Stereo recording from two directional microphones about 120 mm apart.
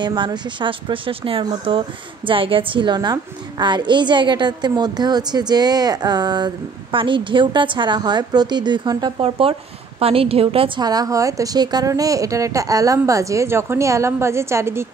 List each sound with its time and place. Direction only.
0.0 s a woman's voice: 40° right (ahead or behind)
9.2 s a woman's voice: 50° right (ahead or behind)
10.8 s a woman's voice: 30° right (ahead or behind)